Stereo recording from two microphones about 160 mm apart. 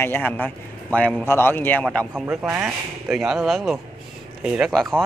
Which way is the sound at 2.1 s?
15° right (ahead or behind).